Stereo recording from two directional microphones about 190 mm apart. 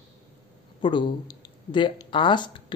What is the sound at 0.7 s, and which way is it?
A man's voice, 25° left (ahead or behind).